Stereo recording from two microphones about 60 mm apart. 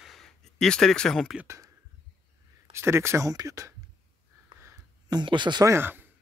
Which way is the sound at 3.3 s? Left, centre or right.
Right.